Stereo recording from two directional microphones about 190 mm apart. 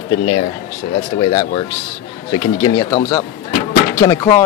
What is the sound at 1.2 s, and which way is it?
Speech, 25° left (ahead or behind).